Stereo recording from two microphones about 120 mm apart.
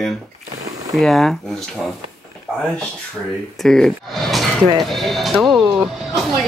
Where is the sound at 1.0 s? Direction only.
Centre (ahead or behind).